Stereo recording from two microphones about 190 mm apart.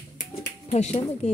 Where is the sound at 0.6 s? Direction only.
35° left (ahead or behind).